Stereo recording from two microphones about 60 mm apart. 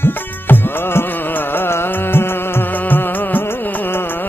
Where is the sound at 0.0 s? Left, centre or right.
Left.